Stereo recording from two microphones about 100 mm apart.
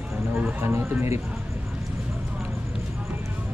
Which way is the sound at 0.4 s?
20° right (ahead or behind).